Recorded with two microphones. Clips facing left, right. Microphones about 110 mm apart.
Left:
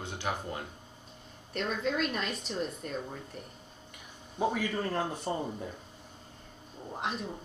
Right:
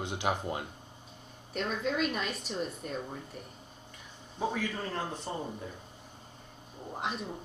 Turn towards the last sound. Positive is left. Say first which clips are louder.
# even
turn(degrees=0)  # may be behind; listen again after turning